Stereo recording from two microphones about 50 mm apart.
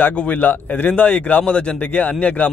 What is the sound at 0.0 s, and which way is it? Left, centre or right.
A man's voice, left.